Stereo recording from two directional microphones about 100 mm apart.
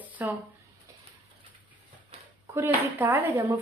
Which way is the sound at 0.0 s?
15° right (ahead or behind).